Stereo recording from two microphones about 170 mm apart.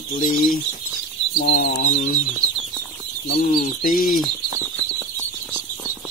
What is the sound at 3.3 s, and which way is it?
Speech, 55° left (ahead or behind).